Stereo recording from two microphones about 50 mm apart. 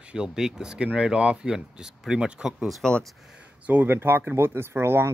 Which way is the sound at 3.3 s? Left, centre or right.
Right.